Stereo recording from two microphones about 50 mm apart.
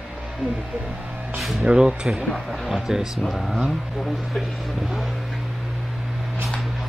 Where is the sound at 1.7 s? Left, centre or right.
Centre.